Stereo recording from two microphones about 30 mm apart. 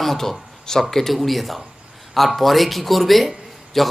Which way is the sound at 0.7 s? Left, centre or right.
Left.